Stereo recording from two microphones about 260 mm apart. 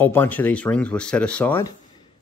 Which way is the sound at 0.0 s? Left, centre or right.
Centre.